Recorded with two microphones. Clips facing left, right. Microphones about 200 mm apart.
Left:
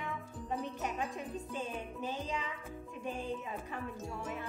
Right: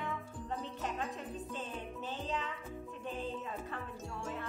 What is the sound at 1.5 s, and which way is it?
Music, 15° left (ahead or behind).